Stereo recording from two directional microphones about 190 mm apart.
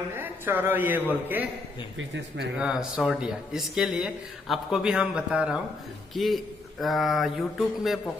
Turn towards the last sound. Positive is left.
turn(degrees=0)  # may be behind; listen again after turning